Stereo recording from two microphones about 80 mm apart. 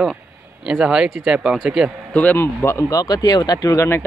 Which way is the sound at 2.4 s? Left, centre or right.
Left.